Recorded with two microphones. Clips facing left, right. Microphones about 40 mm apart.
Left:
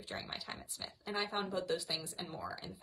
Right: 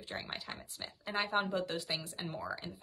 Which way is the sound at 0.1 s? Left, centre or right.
Right.